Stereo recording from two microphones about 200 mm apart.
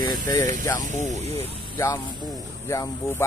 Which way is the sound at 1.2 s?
30° right (ahead or behind).